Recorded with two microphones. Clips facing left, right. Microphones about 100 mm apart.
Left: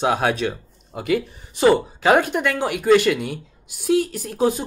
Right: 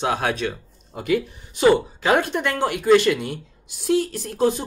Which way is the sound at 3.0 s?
5° left (ahead or behind).